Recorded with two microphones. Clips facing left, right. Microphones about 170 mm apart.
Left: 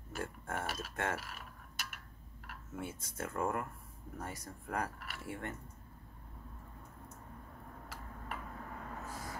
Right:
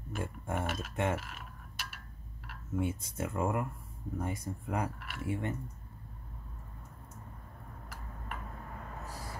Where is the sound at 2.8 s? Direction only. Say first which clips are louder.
Right 7 dB; 15° right (ahead or behind).